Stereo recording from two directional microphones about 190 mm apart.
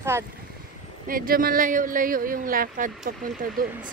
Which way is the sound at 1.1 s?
50° right (ahead or behind).